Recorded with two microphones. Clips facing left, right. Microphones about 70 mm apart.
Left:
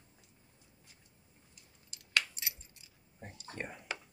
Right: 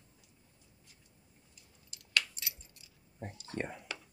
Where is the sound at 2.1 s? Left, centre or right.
Left.